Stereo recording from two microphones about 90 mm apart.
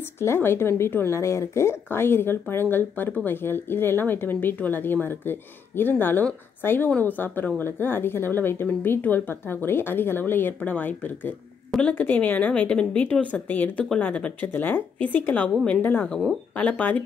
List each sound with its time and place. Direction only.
0.2 s speech: 30° left (ahead or behind)